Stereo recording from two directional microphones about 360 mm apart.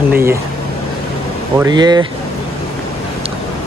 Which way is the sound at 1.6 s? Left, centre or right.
Centre.